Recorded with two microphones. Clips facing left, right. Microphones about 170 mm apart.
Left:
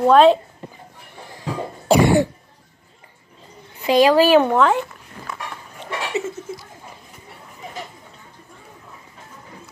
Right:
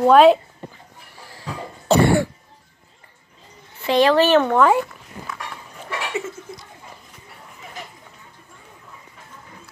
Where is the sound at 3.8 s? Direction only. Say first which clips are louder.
Left 2 dB; 10° left (ahead or behind).